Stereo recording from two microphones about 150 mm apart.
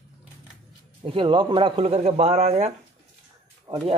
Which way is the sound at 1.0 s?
35° right (ahead or behind).